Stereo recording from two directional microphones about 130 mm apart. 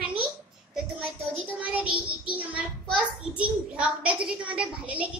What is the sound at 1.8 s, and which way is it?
Child singing, 40° right (ahead or behind).